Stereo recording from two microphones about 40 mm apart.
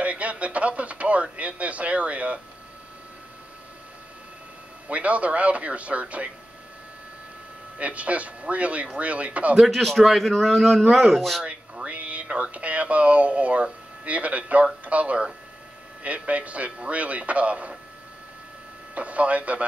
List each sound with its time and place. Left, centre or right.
0.0 s radio: right
4.8 s a man's voice: right
7.7 s a man's voice: right
9.7 s a man's voice: centre
11.4 s a man's voice: right
18.9 s a man's voice: right